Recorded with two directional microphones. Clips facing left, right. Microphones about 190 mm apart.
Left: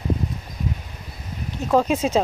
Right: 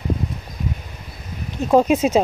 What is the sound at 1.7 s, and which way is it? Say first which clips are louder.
Speech: right 4 dB; 20° right (ahead or behind).